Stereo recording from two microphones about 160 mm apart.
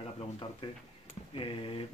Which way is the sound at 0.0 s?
35° left (ahead or behind).